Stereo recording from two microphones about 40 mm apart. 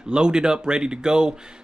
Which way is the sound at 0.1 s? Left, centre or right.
Right.